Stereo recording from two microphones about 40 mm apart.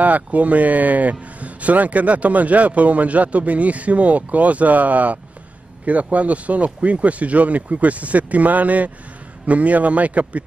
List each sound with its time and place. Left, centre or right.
0.0 s speech: right